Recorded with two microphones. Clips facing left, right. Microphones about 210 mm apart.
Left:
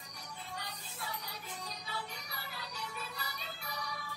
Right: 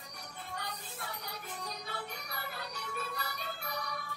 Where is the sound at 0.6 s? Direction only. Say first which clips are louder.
Right 5 dB; 55° right (ahead or behind).